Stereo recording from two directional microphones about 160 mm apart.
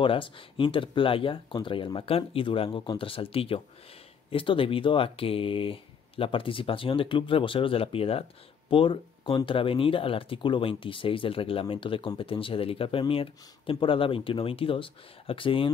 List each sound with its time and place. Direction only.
0.0 s speech: 35° left (ahead or behind)